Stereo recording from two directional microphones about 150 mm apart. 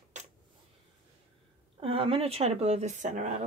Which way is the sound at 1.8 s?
40° right (ahead or behind).